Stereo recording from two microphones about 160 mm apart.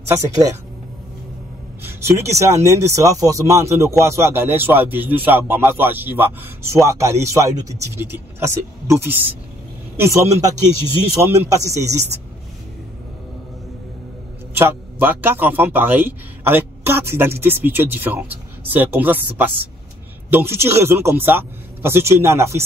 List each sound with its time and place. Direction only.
0.1 s speech: 20° right (ahead or behind)
1.8 s speech: 15° right (ahead or behind)
14.5 s speech: 15° right (ahead or behind)